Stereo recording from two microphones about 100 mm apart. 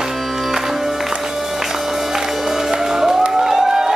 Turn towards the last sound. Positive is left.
turn(degrees=-5)  # may be behind; listen again after turning